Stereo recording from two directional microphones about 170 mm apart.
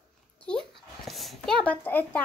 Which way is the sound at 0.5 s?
5° left (ahead or behind).